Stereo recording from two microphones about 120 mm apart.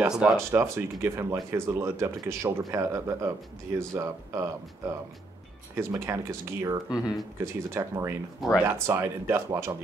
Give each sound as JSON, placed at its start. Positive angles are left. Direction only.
{"t": 0.1, "sound": "speech", "side_deg": -5}
{"t": 0.5, "sound": "speech", "side_deg": -20}